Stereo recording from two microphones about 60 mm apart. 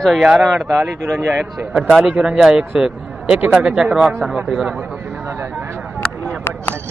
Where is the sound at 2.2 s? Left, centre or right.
Centre.